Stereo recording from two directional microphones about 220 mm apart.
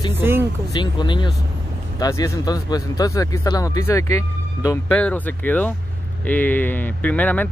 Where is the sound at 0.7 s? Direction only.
20° left (ahead or behind).